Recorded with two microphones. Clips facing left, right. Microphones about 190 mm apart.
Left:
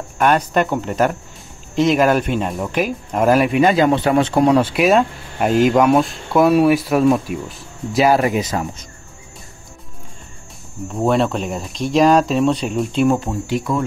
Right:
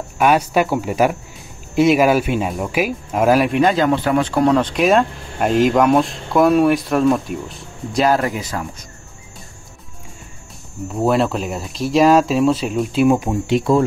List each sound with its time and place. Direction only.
0.2 s speech: 10° right (ahead or behind); by 4.6 s 20° left (ahead or behind)
4.6 s speech: 5° left (ahead or behind); by 8.8 s 20° left (ahead or behind)
10.9 s speech: centre (ahead or behind)
13.2 s speech: 20° right (ahead or behind)